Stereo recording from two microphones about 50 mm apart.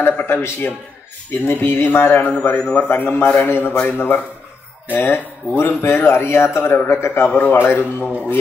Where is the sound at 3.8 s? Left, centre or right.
Left.